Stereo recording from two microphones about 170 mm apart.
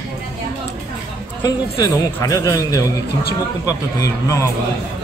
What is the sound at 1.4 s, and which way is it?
A man's voice, 20° left (ahead or behind).